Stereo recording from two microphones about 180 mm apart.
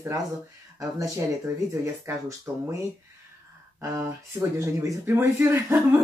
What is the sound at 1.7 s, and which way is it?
Speech, 15° right (ahead or behind).